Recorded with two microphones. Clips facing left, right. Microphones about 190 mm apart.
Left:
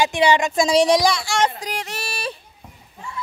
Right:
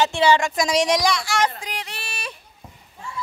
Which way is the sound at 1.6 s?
45° left (ahead or behind).